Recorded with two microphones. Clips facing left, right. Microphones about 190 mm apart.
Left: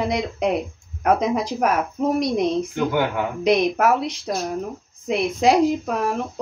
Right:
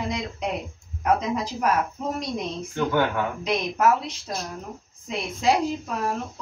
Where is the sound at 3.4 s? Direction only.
70° left (ahead or behind).